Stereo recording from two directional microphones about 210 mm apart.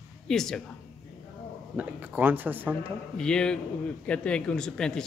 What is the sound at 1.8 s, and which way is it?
Speech, 5° right (ahead or behind).